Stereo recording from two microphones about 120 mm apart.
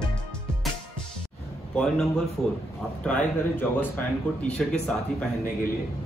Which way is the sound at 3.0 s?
10° left (ahead or behind).